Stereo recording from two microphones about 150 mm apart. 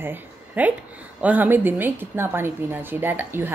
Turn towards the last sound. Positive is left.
turn(degrees=-15)  # may be behind; listen again after turning